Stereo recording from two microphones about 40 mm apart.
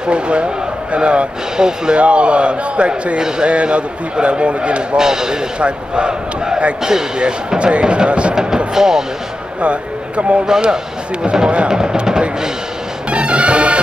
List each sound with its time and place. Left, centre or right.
0.0 s speech: right
4.9 s speech: centre
8.7 s speech: centre
9.6 s speech: right
10.4 s speech: centre
13.1 s music: right